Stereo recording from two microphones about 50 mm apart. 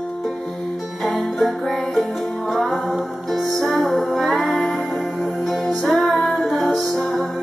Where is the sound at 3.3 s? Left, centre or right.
Centre.